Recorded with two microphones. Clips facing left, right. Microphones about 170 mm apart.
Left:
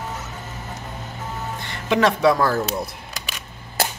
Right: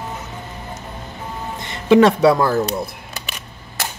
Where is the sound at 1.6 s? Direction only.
30° right (ahead or behind).